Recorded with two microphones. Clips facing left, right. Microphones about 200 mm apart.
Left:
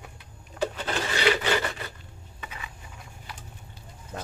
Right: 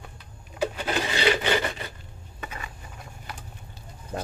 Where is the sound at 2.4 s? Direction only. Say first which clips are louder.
Right 4 dB; 45° right (ahead or behind).